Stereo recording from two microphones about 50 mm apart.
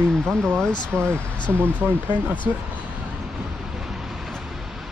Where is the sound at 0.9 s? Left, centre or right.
Right.